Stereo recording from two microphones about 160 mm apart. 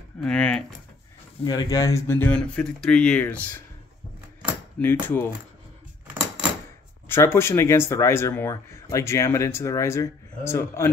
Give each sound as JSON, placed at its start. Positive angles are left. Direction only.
{"t": 0.2, "sound": "typing", "side_deg": 5}
{"t": 1.4, "sound": "speech", "side_deg": 25}
{"t": 5.0, "sound": "speech", "side_deg": 10}
{"t": 7.1, "sound": "speech", "side_deg": 15}